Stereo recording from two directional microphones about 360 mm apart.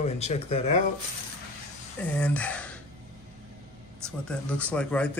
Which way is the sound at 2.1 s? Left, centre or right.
Centre.